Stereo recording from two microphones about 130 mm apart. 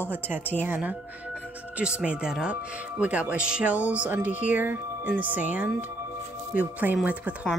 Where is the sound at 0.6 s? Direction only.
10° right (ahead or behind).